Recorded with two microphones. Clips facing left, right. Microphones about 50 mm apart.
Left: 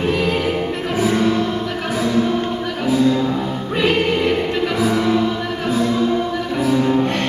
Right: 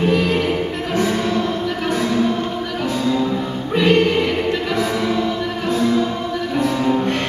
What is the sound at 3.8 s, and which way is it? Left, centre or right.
Music, centre.